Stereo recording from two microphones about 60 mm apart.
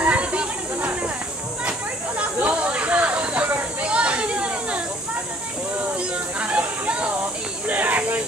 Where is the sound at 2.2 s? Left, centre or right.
Right.